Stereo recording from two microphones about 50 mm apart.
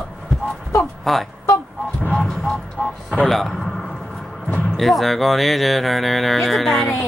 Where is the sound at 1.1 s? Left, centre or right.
Centre.